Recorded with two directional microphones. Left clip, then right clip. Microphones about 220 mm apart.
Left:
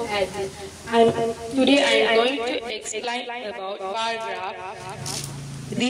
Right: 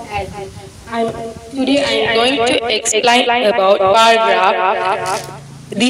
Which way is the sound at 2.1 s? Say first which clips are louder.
Right 8 dB; 50° right (ahead or behind).